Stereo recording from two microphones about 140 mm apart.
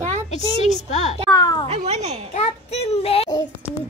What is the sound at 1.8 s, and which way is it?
Speech, 50° right (ahead or behind).